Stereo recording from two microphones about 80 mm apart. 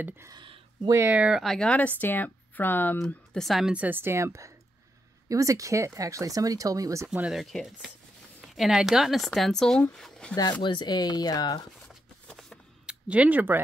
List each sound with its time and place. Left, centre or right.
1.0 s speech: centre
1.3 s speech: centre
1.7 s a woman's voice: centre
3.3 s speech: centre
3.7 s a woman's voice: right
7.1 s speech: centre
10.3 s speech: left
12.8 s speech: centre